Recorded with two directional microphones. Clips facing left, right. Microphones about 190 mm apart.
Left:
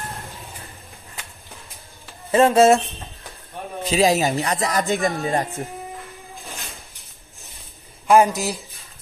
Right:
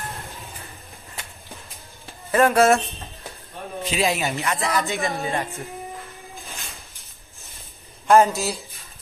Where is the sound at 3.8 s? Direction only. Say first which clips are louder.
Left 5 dB; 35° left (ahead or behind).